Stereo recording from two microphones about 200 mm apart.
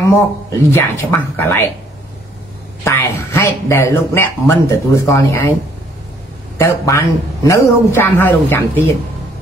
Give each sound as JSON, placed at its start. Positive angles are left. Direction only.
{"t": 0.1, "sound": "speech", "side_deg": 15}
{"t": 2.8, "sound": "speech", "side_deg": 10}
{"t": 6.6, "sound": "speech", "side_deg": 15}